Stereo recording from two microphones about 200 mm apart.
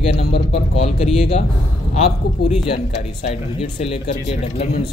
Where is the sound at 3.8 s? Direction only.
35° left (ahead or behind).